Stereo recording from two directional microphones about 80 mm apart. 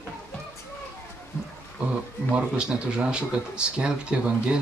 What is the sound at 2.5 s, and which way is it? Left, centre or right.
Speech, centre.